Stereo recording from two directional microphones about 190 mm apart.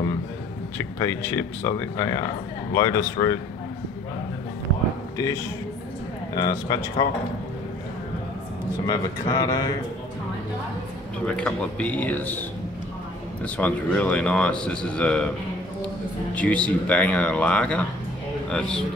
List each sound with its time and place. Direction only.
0.7 s speech: 15° left (ahead or behind)
5.1 s speech: 15° left (ahead or behind)
8.8 s speech: 20° left (ahead or behind)
11.2 s speech: 5° left (ahead or behind)
16.3 s a man's voice: 5° left (ahead or behind)